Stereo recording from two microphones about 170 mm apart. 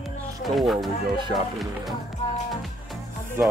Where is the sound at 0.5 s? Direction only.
Centre (ahead or behind).